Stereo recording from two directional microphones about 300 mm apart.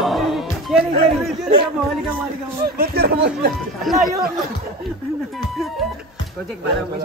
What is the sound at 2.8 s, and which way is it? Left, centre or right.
Speech, right.